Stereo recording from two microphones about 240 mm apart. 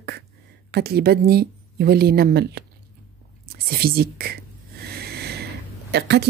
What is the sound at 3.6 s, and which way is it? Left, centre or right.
Speech, right.